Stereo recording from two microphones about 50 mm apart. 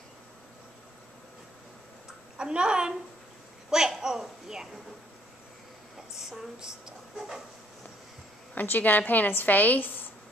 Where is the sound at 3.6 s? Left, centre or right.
Centre.